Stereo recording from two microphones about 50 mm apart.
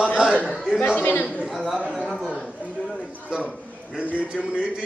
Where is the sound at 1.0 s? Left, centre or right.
Left.